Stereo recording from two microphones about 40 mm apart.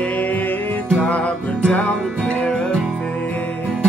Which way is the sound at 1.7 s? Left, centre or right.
Left.